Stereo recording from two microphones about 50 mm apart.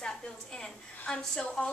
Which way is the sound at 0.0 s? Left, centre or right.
Centre.